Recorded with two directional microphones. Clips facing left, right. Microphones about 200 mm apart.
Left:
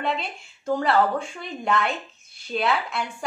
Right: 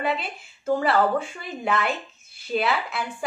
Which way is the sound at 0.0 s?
5° right (ahead or behind).